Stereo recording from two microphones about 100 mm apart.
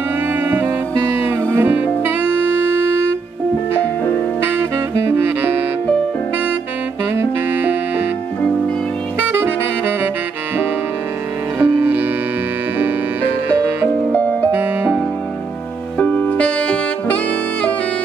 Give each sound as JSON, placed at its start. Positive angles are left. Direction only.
{"t": 0.4, "sound": "saxophone", "side_deg": -20}
{"t": 1.5, "sound": "music", "side_deg": -20}
{"t": 4.6, "sound": "music", "side_deg": -20}
{"t": 11.6, "sound": "music", "side_deg": -20}
{"t": 14.1, "sound": "music", "side_deg": 15}
{"t": 14.5, "sound": "music", "side_deg": -15}
{"t": 16.0, "sound": "saxophone", "side_deg": 15}